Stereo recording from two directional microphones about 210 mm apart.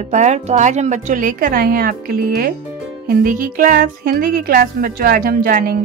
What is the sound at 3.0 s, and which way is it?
Music, 40° right (ahead or behind).